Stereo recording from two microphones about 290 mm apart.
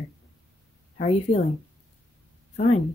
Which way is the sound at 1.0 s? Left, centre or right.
Left.